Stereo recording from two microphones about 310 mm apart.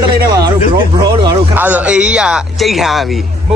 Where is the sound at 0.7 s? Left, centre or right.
Centre.